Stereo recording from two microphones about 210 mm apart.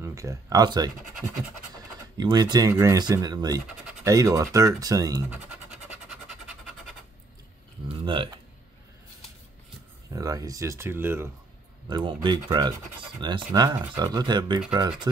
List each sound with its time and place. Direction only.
0.0 s speech: 15° right (ahead or behind)
2.1 s speech: 20° right (ahead or behind)
7.9 s speech: 25° right (ahead or behind)
10.1 s speech: 15° right (ahead or behind)
11.9 s speech: 20° right (ahead or behind)